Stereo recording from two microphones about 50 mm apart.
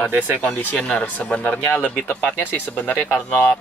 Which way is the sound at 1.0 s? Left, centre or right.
Left.